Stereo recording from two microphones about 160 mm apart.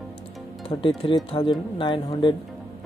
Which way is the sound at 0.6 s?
35° left (ahead or behind).